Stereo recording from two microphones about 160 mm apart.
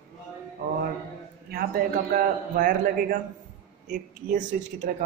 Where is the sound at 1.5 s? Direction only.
70° right (ahead or behind); by 4.9 s 50° right (ahead or behind).